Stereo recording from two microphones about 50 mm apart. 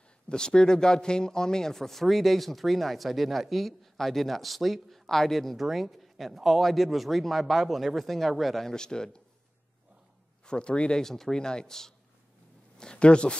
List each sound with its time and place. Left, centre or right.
0.3 s speech: centre
10.4 s speech: centre
11.0 s speech: centre